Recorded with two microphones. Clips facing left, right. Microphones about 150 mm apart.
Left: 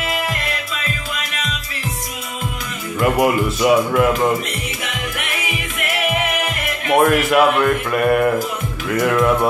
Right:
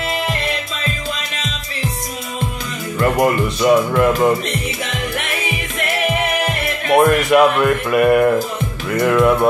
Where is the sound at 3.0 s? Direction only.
5° left (ahead or behind).